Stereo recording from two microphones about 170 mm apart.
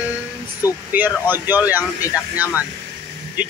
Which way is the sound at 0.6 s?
20° left (ahead or behind).